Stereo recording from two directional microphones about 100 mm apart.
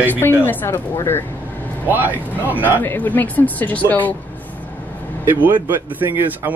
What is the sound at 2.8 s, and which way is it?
Speech, 20° left (ahead or behind).